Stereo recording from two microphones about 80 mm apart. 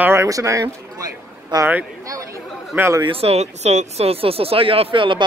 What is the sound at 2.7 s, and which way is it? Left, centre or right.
Speech, right.